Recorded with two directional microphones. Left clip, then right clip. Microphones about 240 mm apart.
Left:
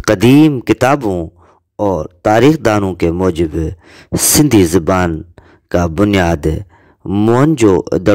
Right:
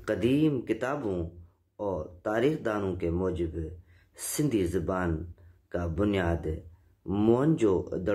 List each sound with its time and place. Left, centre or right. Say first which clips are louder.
0.0 s speech: left 17 dB; left